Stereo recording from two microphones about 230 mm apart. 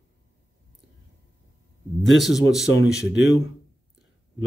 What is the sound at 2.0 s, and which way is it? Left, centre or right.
Speech, centre.